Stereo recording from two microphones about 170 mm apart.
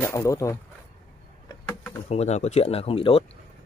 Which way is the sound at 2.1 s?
40° left (ahead or behind).